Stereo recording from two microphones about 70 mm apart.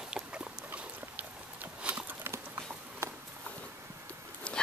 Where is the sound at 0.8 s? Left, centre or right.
Right.